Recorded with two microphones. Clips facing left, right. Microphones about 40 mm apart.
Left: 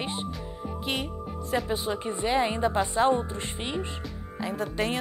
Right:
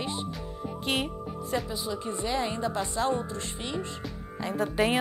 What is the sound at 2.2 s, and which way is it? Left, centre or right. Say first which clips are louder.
A woman's voice: left 5 dB; left.